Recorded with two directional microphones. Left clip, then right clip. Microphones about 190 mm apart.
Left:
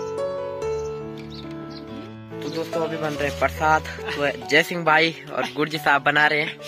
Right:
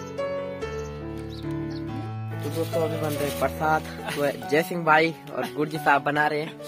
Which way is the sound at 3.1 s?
Centre (ahead or behind).